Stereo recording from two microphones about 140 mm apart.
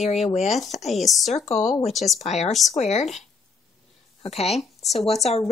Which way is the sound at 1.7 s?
Centre (ahead or behind).